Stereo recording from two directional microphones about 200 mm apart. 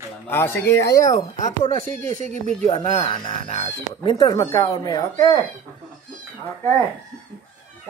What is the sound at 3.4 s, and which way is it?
Speech, 35° left (ahead or behind).